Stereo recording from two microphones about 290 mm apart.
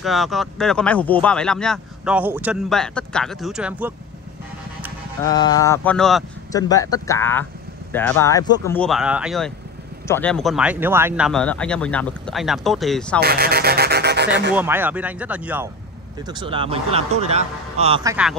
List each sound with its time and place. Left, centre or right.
0.0 s speech: centre
5.2 s speech: centre
6.5 s speech: centre
13.2 s music: right
14.5 s a man's voice: centre